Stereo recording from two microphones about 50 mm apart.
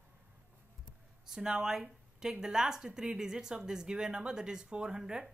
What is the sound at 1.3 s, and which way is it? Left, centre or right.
Speech, centre.